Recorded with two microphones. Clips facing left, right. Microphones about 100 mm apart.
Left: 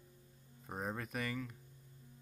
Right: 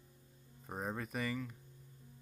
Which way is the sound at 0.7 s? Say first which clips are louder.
Right 1 dB; centre (ahead or behind).